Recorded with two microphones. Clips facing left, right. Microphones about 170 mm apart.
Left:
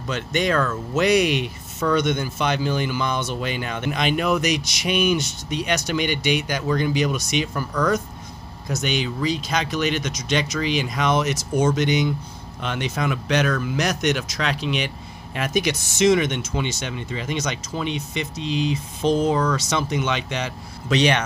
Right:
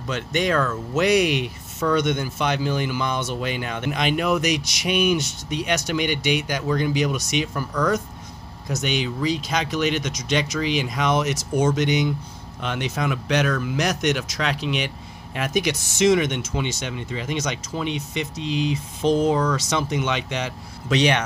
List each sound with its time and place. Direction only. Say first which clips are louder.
0.1 s speech: even; 10° right (ahead or behind)